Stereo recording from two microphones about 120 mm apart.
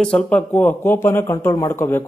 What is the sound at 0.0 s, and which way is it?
Speech, 10° left (ahead or behind).